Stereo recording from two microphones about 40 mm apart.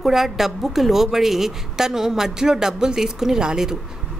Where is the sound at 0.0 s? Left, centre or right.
Centre.